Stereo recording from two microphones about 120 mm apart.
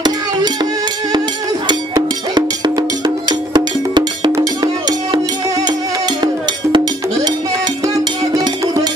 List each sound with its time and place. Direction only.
1.7 s music: 40° right (ahead or behind)